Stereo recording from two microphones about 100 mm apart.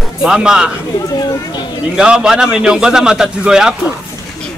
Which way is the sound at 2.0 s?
10° right (ahead or behind).